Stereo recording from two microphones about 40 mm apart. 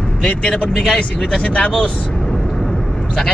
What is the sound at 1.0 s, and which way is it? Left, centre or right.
Speech, left.